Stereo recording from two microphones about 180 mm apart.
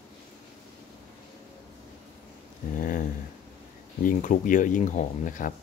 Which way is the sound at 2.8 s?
50° left (ahead or behind).